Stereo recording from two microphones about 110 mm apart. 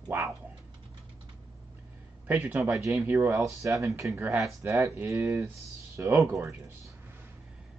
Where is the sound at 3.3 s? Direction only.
30° right (ahead or behind).